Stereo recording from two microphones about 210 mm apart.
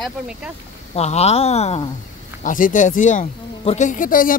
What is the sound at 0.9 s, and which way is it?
Speech, 30° left (ahead or behind).